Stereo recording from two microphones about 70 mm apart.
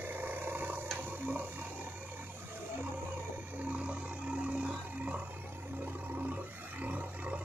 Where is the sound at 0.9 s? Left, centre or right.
Right.